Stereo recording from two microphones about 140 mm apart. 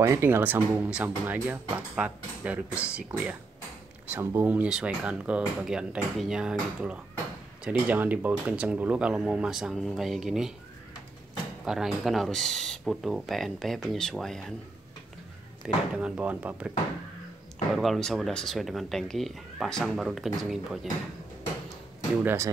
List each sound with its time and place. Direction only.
0.0 s speech: 20° right (ahead or behind); by 10.5 s 5° right (ahead or behind)
11.6 s speech: 5° right (ahead or behind)
15.6 s speech: 10° right (ahead or behind)
17.7 s speech: centre (ahead or behind)
22.2 s speech: 15° right (ahead or behind)